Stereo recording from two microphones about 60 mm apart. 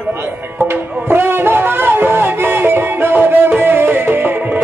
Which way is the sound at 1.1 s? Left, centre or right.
Right.